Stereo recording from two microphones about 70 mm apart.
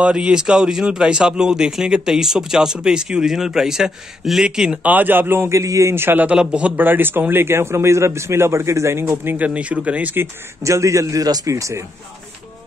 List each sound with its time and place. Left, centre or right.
0.0 s speech: centre
4.8 s speech: right
5.6 s a man's voice: right
5.9 s speech: right
6.2 s speech: centre
6.8 s speech: right
9.5 s speech: centre
10.6 s a man's voice: right
11.2 s speech: right
11.5 s a man's voice: right